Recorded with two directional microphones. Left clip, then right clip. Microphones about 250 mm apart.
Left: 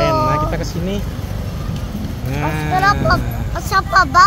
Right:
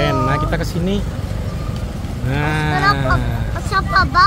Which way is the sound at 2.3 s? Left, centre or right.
Centre.